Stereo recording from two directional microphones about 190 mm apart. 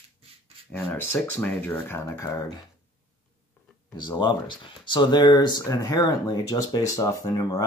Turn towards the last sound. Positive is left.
turn(degrees=15)  # may be behind; listen again after turning